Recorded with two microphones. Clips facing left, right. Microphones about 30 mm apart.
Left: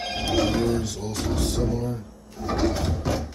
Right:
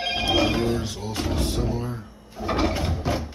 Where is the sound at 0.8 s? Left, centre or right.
Right.